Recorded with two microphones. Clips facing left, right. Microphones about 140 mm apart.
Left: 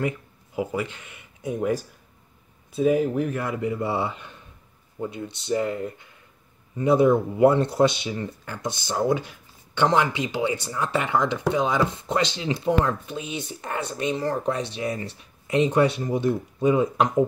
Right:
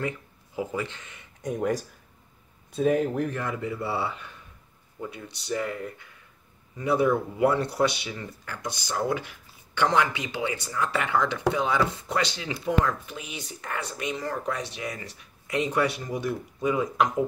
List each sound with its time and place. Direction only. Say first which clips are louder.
0.6 s speech: left 3 dB; 10° left (ahead or behind); by 17.1 s 30° left (ahead or behind)